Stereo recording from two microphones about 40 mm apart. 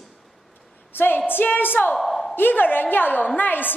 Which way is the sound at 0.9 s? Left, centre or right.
Left.